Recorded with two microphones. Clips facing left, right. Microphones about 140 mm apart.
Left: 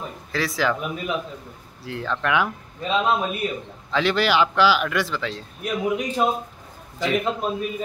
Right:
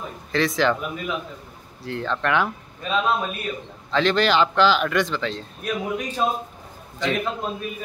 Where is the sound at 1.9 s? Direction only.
10° left (ahead or behind).